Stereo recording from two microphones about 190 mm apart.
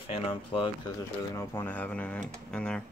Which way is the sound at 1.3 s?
15° left (ahead or behind).